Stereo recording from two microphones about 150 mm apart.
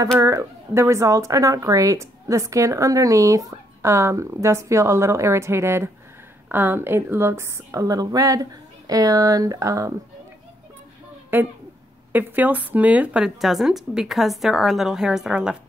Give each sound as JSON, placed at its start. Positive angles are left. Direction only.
{"t": 0.2, "sound": "speech", "side_deg": -20}
{"t": 11.3, "sound": "speech", "side_deg": -10}